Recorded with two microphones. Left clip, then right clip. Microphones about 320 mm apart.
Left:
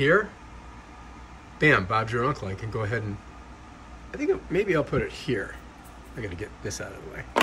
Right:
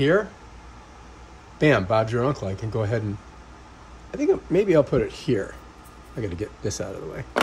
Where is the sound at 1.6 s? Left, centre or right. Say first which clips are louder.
Right 2 dB; centre.